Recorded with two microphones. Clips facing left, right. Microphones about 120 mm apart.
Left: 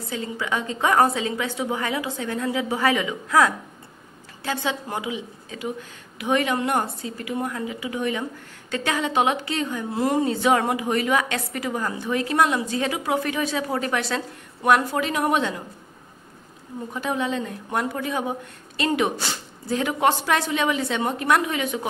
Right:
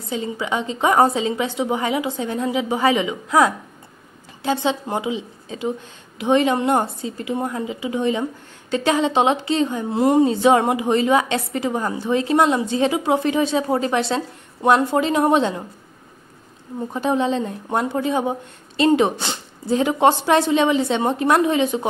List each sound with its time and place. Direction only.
0.1 s a woman's voice: 20° right (ahead or behind)
16.9 s a woman's voice: 30° right (ahead or behind)